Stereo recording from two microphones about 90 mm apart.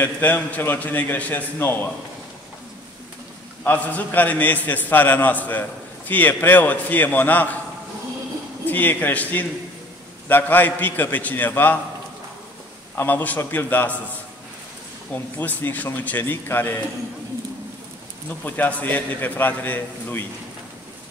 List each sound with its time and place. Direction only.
0.0 s a man's voice: 20° left (ahead or behind)
3.6 s a man's voice: 15° left (ahead or behind)
8.6 s a man's voice: 20° left (ahead or behind)
12.9 s a man's voice: 20° left (ahead or behind)
15.1 s a man's voice: 25° left (ahead or behind)
18.4 s a man's voice: 15° left (ahead or behind)